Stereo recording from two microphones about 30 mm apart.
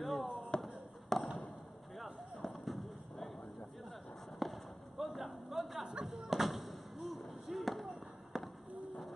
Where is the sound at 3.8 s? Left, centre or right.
Centre.